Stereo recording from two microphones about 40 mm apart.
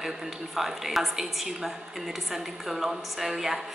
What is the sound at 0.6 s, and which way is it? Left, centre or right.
A woman's voice, centre.